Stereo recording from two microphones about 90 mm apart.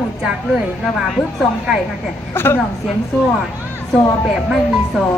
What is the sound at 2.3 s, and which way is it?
Speech, 25° left (ahead or behind).